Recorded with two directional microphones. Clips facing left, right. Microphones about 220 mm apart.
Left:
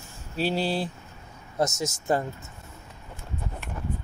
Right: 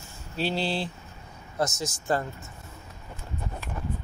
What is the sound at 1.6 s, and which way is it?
Speech, 25° left (ahead or behind).